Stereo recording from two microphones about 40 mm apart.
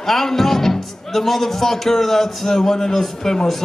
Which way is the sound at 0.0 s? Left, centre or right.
Centre.